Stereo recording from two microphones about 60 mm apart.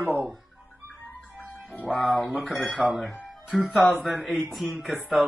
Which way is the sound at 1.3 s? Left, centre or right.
Right.